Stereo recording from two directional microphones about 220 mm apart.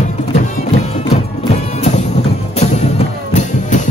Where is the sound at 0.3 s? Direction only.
30° left (ahead or behind).